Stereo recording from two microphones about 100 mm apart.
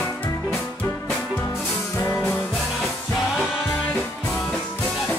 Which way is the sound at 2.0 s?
25° left (ahead or behind).